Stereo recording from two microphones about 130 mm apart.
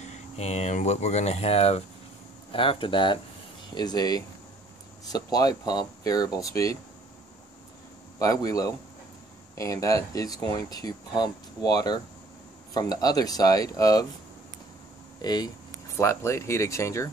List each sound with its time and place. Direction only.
0.0 s speech: 60° left (ahead or behind); by 6.8 s 25° left (ahead or behind)
8.2 s speech: 25° left (ahead or behind)
15.2 s speech: 30° left (ahead or behind)
16.0 s speech: 20° left (ahead or behind)